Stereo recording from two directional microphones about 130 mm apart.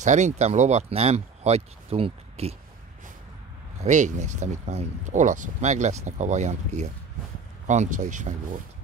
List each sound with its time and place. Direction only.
0.0 s speech: 65° right (ahead or behind); by 2.5 s 50° right (ahead or behind)
3.8 s speech: 70° right (ahead or behind)